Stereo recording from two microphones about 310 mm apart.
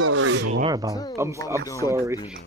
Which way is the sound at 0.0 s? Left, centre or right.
Right.